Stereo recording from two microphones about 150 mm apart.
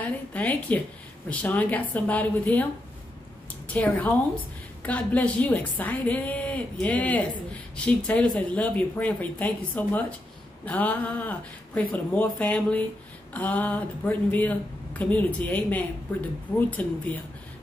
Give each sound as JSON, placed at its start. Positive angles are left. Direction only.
{"t": 0.0, "sound": "speech", "side_deg": 10}
{"t": 3.6, "sound": "speech", "side_deg": 10}